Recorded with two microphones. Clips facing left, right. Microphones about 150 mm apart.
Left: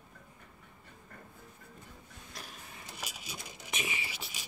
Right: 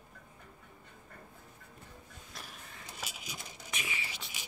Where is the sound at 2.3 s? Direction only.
Centre (ahead or behind).